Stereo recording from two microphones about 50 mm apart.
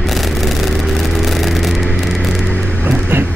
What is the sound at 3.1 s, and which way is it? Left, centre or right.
Train, right.